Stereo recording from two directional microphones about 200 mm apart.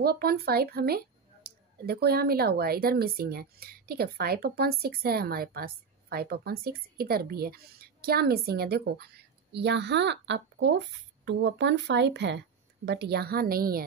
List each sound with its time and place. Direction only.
0.0 s speech: 50° right (ahead or behind)